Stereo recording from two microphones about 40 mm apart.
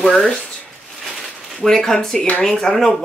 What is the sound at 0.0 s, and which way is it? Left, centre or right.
Speech, centre.